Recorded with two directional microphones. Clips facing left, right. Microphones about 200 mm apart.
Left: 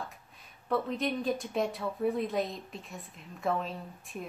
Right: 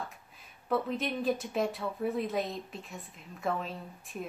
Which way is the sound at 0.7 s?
Centre (ahead or behind).